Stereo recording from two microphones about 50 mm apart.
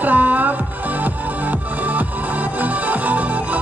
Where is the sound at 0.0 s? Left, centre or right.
Right.